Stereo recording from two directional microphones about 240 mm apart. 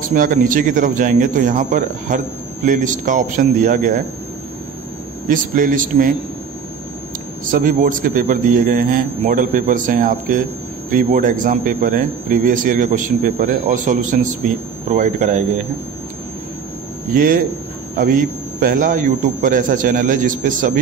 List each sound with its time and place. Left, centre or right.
0.0 s speech: right
5.3 s speech: right
7.4 s speech: right
17.1 s speech: right